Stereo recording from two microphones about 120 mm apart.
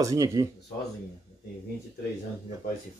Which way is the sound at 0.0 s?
25° right (ahead or behind).